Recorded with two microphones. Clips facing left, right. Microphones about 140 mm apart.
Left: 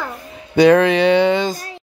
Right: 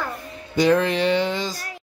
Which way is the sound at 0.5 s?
70° left (ahead or behind).